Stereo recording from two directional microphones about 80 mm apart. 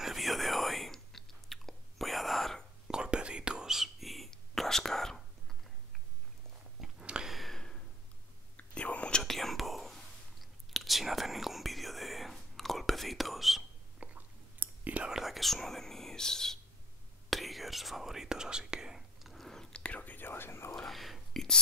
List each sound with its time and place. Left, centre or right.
0.0 s whispering: centre
2.9 s whispering: centre
6.8 s a sound: centre
7.3 s a sound: centre
8.5 s whispering: centre
13.9 s whispering: centre
15.0 s whispering: centre; by 20.7 s left
20.7 s whispering: centre